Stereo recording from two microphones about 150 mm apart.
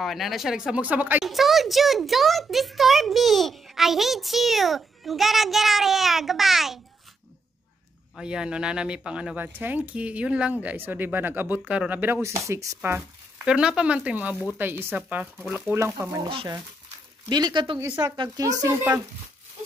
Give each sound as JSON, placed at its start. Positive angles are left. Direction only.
{"t": 0.0, "sound": "a child's voice", "side_deg": 0}
{"t": 8.2, "sound": "a child's voice", "side_deg": -5}
{"t": 15.7, "sound": "speech", "side_deg": -15}
{"t": 17.3, "sound": "speech", "side_deg": -30}
{"t": 17.7, "sound": "speech", "side_deg": -15}
{"t": 18.1, "sound": "speech", "side_deg": -30}